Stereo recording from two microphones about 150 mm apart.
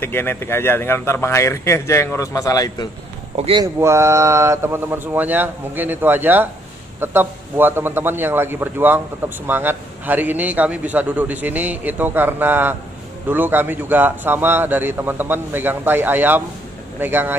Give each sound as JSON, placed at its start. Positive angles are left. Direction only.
{"t": 0.0, "sound": "speech", "side_deg": 15}
{"t": 3.3, "sound": "speech", "side_deg": -40}
{"t": 3.6, "sound": "a man's voice", "side_deg": -20}